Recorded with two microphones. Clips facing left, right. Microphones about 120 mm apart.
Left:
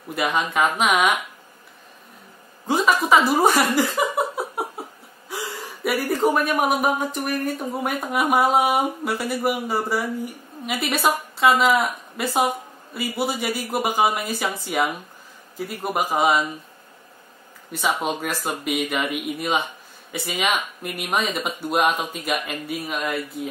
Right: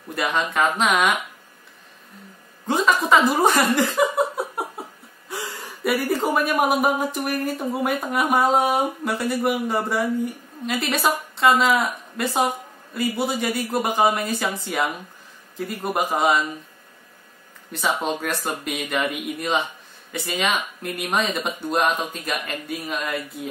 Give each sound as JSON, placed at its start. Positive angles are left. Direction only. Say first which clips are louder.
{"t": 0.1, "sound": "speech", "louder": "left 1 dB", "side_deg": 10}
{"t": 2.6, "sound": "chuckle", "louder": "even", "side_deg": 10}
{"t": 5.3, "sound": "speech", "louder": "left 1 dB", "side_deg": 0}
{"t": 17.7, "sound": "speech", "louder": "even", "side_deg": 0}